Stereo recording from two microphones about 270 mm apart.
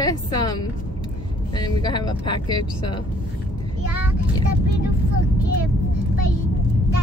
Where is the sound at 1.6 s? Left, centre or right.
Centre.